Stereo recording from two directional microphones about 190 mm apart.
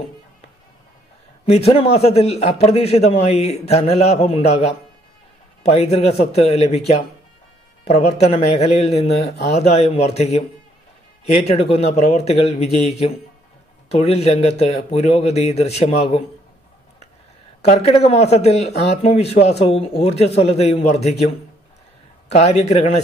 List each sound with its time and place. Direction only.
1.4 s speech: 30° left (ahead or behind)
13.8 s speech: 30° left (ahead or behind)
17.6 s speech: 35° left (ahead or behind)